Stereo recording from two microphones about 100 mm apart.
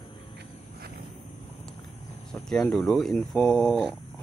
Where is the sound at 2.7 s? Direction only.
5° left (ahead or behind).